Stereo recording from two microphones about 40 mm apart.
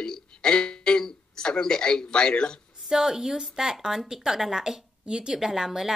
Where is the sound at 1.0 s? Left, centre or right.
Centre.